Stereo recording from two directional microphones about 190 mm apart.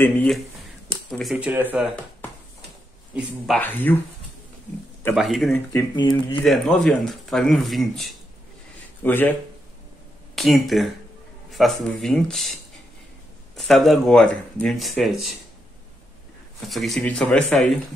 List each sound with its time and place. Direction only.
0.0 s speech: 10° left (ahead or behind)
1.1 s speech: 5° right (ahead or behind)
3.2 s speech: 5° left (ahead or behind)
5.1 s speech: centre (ahead or behind)
5.9 s speech: 25° left (ahead or behind)
6.4 s speech: centre (ahead or behind)
10.3 s speech: centre (ahead or behind)
13.6 s speech: centre (ahead or behind)
16.6 s speech: centre (ahead or behind)